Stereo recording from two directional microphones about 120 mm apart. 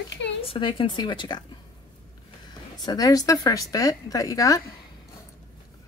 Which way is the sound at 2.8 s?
30° left (ahead or behind).